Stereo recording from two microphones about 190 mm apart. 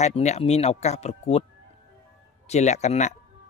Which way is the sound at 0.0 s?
35° left (ahead or behind).